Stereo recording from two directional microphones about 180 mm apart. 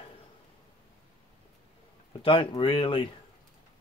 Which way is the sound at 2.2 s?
30° left (ahead or behind).